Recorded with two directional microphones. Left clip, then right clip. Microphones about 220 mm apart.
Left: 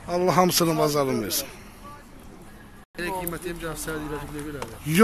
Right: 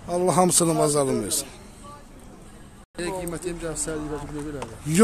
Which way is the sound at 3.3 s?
35° right (ahead or behind).